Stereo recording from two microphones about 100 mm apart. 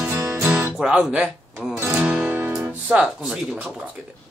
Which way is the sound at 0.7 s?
5° right (ahead or behind).